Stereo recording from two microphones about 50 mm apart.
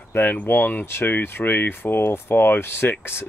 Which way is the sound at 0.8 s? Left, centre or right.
Left.